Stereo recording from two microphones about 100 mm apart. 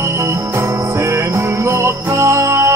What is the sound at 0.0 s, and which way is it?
Music, 30° right (ahead or behind).